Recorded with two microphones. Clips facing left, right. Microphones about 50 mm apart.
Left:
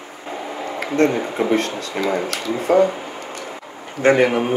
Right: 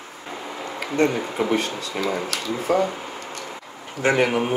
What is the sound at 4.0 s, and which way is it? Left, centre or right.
Speech, centre.